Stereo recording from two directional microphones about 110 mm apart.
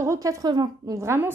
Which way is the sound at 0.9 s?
25° right (ahead or behind).